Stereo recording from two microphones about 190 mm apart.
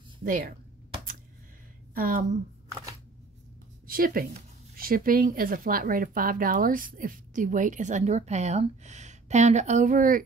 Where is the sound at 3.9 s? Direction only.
50° right (ahead or behind).